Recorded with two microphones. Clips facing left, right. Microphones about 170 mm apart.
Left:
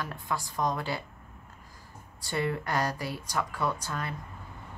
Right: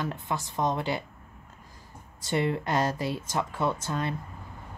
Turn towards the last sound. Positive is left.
turn(degrees=-25)  # may be behind; listen again after turning